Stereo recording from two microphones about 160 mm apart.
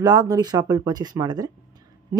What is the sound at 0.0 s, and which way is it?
Speech, 25° right (ahead or behind).